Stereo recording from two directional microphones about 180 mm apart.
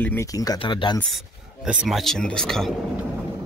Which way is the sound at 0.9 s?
Centre (ahead or behind).